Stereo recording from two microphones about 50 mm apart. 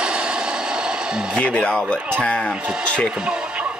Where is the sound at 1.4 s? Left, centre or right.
Left.